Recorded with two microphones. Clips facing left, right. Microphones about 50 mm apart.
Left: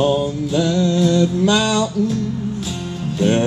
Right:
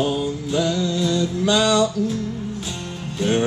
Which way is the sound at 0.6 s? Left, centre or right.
Left.